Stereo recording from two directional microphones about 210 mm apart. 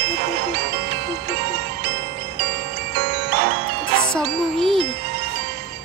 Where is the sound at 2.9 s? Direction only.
55° right (ahead or behind).